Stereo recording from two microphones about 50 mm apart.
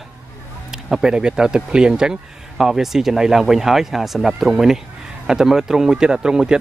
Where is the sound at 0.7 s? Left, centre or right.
Centre.